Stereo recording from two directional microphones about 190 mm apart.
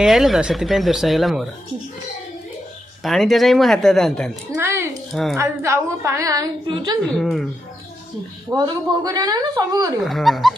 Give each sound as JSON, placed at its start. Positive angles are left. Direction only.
{"t": 0.0, "sound": "speech", "side_deg": 0}
{"t": 3.0, "sound": "speech", "side_deg": 0}
{"t": 4.5, "sound": "a woman's voice", "side_deg": -15}
{"t": 7.2, "sound": "speech", "side_deg": 0}
{"t": 8.5, "sound": "a woman's voice", "side_deg": -20}
{"t": 10.0, "sound": "speech", "side_deg": 0}